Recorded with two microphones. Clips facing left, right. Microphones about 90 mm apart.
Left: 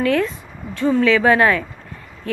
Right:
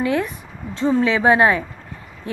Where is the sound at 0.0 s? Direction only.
20° right (ahead or behind).